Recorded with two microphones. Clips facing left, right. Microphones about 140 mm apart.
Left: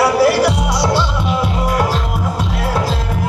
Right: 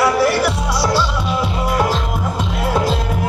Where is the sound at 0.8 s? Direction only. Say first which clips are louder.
Left 1 dB; 20° left (ahead or behind).